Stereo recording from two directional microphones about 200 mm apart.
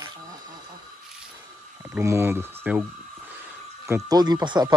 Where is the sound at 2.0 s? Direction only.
10° right (ahead or behind).